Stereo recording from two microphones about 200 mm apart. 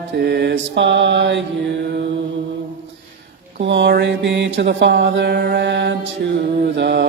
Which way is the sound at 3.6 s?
60° right (ahead or behind).